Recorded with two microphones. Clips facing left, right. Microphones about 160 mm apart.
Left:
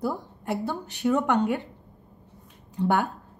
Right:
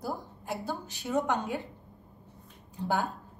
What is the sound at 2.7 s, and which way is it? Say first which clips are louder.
Speech: left 6 dB; 70° left (ahead or behind).